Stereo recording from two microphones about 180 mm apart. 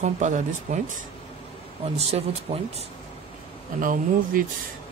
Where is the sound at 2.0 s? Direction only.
35° right (ahead or behind).